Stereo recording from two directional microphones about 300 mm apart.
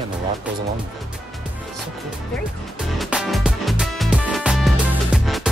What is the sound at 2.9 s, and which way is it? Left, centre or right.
Music, centre.